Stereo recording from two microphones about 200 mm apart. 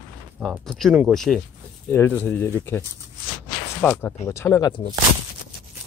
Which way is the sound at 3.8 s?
10° left (ahead or behind).